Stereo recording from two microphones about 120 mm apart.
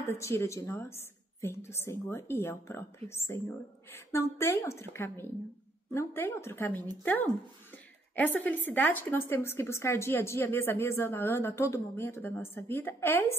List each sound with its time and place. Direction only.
0.0 s a woman's voice: 20° left (ahead or behind)